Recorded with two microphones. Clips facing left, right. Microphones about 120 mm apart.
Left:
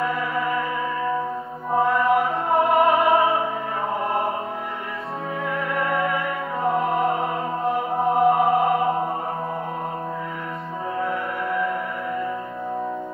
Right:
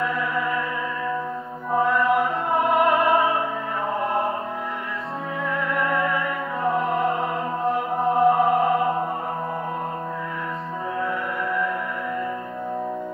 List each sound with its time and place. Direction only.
0.0 s music: centre (ahead or behind)
1.7 s mantra: 25° left (ahead or behind)
2.0 s music: centre (ahead or behind)
5.5 s music: centre (ahead or behind)